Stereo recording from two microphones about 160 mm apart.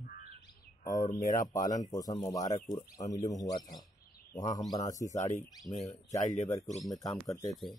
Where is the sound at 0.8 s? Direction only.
25° left (ahead or behind).